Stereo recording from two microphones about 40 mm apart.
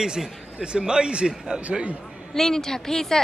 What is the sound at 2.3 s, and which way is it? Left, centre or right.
Speech, centre.